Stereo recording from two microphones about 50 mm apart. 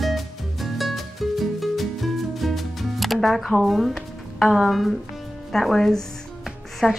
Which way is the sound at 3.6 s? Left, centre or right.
Centre.